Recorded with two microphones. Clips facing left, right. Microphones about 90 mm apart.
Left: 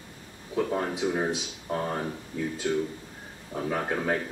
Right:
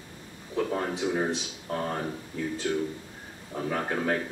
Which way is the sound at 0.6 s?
Centre (ahead or behind).